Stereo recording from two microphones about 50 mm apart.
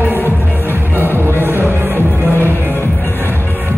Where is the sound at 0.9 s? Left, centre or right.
Right.